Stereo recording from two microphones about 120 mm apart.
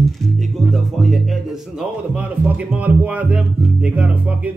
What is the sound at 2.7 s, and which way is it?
Speech, 10° right (ahead or behind).